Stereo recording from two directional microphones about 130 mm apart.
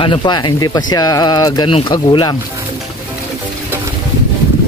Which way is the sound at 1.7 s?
40° left (ahead or behind).